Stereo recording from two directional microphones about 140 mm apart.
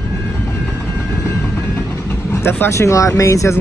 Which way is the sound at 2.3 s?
20° left (ahead or behind).